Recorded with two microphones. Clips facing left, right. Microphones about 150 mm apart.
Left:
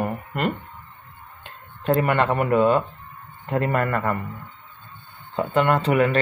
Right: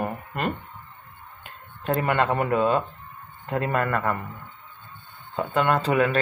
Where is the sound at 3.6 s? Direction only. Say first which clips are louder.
Left 2 dB; 20° right (ahead or behind).